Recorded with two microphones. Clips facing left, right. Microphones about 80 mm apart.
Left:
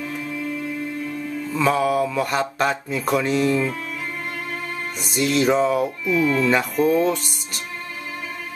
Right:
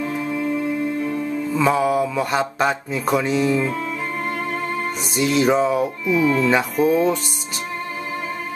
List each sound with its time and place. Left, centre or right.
0.0 s music: right
1.5 s music: centre
1.8 s mantra: centre
5.1 s mantra: centre